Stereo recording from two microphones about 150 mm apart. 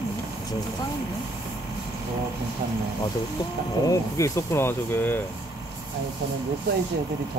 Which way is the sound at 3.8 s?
20° left (ahead or behind).